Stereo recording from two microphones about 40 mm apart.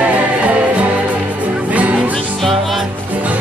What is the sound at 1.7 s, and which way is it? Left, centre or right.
Music, right.